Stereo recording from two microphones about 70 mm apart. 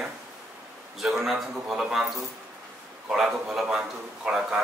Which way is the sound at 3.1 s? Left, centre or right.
Centre.